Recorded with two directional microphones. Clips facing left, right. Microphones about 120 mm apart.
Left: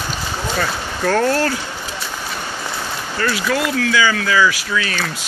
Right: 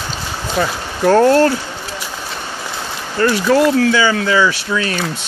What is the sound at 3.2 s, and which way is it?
Speech, 30° right (ahead or behind).